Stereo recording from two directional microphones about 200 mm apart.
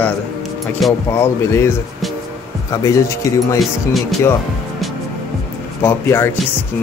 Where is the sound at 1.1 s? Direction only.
15° left (ahead or behind).